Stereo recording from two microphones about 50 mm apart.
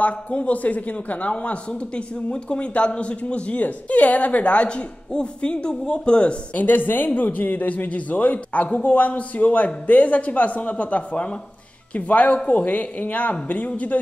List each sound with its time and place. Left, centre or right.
0.0 s speech: left
6.6 s speech: left